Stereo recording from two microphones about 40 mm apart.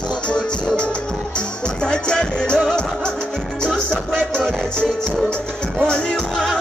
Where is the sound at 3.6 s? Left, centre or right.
Centre.